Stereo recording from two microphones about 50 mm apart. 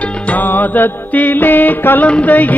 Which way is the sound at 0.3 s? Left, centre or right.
Left.